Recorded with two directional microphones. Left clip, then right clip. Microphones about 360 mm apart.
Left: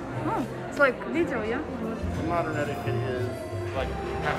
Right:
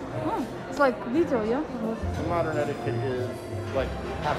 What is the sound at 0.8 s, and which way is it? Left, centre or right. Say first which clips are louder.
Speech: left 1 dB; centre.